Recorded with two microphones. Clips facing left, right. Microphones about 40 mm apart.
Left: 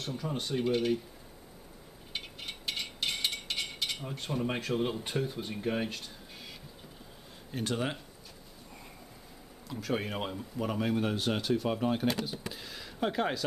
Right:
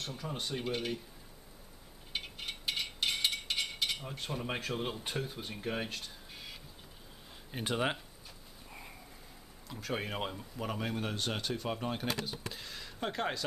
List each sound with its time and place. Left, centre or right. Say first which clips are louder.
0.0 s speech: left 4 dB; centre
2.1 s a sound: even; centre
7.5 s speech: even; centre
9.7 s speech: left 4 dB; centre